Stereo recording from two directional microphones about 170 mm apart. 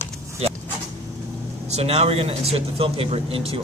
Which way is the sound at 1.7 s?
40° right (ahead or behind).